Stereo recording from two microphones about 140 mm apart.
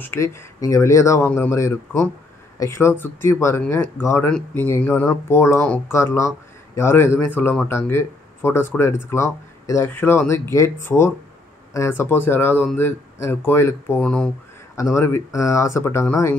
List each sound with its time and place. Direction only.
0.0 s speech: 20° left (ahead or behind)
2.6 s speech: 20° left (ahead or behind)
14.0 s speech: 5° left (ahead or behind)
14.8 s speech: 20° left (ahead or behind)